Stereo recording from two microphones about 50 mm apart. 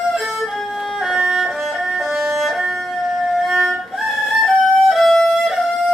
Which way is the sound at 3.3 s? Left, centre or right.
Centre.